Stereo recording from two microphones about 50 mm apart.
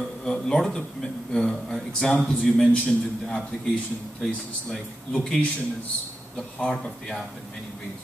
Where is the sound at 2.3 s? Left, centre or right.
Left.